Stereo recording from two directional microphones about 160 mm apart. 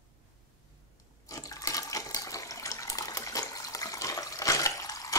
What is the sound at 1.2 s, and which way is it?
Toilet flush, 20° left (ahead or behind).